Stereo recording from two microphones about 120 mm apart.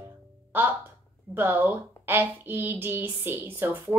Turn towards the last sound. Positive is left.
turn(degrees=-15)  # may be behind; listen again after turning